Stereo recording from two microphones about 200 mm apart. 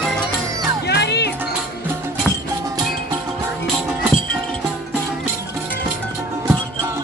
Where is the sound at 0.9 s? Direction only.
55° left (ahead or behind).